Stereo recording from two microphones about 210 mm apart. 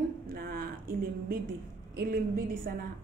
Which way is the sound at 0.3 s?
45° right (ahead or behind).